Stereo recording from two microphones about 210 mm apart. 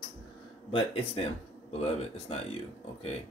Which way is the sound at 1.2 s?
25° left (ahead or behind).